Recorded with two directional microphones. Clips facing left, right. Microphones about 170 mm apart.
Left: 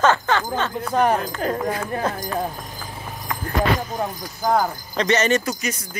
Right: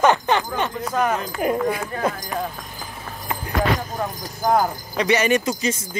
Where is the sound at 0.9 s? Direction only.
30° left (ahead or behind).